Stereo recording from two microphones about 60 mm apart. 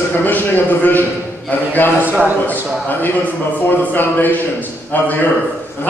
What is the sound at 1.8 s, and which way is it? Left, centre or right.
Speech, left.